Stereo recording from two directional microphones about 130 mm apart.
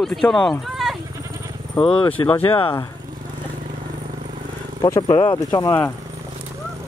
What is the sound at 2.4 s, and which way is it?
Speech, 40° left (ahead or behind).